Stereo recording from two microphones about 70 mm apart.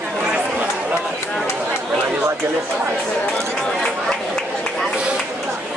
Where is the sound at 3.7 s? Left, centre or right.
Centre.